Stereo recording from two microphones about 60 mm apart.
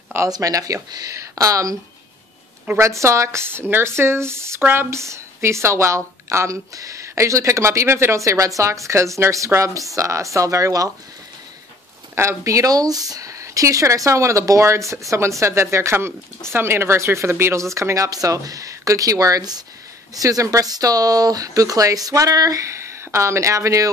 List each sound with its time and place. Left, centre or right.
0.3 s a woman's voice: right
2.8 s a woman's voice: right
3.4 s a woman's voice: right
12.2 s a woman's voice: right
20.2 s speech: right